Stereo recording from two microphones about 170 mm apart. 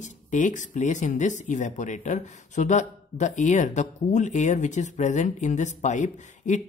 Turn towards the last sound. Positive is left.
turn(degrees=45)  # may be behind; listen again after turning